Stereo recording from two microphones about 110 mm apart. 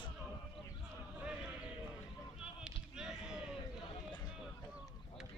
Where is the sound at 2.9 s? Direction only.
5° right (ahead or behind).